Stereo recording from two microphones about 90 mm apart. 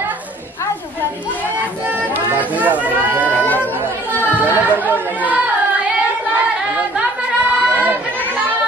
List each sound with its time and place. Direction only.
2.1 s run: 20° right (ahead or behind)
4.2 s music: 20° right (ahead or behind)